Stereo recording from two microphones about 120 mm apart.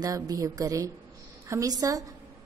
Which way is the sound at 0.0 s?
30° right (ahead or behind).